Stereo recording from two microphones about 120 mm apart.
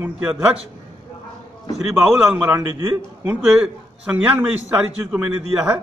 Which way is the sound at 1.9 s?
5° right (ahead or behind).